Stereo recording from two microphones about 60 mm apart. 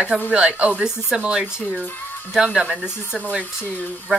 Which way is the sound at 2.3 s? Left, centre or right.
Centre.